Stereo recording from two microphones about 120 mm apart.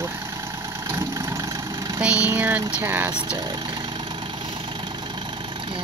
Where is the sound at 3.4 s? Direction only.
35° right (ahead or behind).